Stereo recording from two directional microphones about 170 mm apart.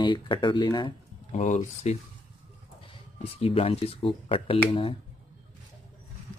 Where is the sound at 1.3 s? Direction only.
45° left (ahead or behind).